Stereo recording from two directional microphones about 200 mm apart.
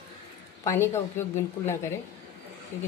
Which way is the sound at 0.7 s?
10° left (ahead or behind).